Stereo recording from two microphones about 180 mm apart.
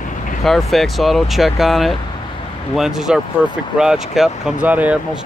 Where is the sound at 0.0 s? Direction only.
45° left (ahead or behind).